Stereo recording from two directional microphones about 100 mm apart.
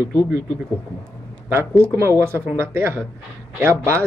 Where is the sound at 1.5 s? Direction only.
25° right (ahead or behind).